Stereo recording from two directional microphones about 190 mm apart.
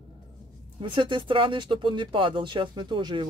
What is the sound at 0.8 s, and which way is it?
Speech, 25° right (ahead or behind).